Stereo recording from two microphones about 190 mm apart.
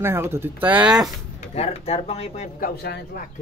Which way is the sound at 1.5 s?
35° left (ahead or behind).